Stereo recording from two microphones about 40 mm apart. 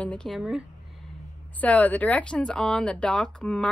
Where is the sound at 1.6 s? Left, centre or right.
Left.